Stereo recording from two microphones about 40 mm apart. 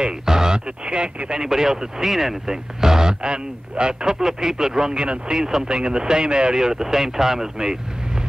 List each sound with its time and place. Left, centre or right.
0.2 s speech: centre
4.9 s speech: right